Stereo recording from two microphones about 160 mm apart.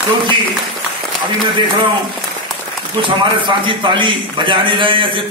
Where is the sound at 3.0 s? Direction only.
30° right (ahead or behind).